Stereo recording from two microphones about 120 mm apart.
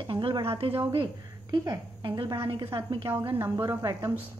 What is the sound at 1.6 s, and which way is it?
A woman's voice, 35° right (ahead or behind).